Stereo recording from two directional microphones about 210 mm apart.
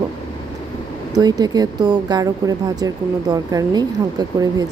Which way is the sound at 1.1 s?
20° right (ahead or behind).